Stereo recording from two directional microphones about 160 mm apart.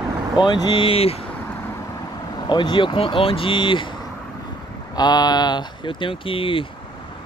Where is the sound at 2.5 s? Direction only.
30° left (ahead or behind).